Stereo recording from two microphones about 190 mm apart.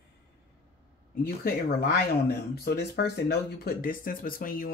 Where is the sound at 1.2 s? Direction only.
50° left (ahead or behind).